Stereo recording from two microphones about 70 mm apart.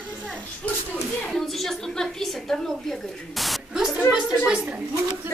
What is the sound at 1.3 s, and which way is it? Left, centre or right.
A woman's voice, centre.